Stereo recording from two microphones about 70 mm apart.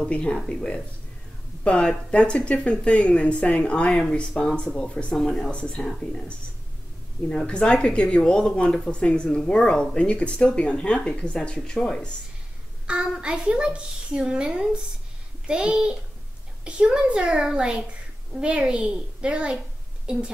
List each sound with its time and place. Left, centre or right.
0.0 s speech: centre
0.4 s speech: centre
1.6 s speech: centre
12.9 s a woman's voice: centre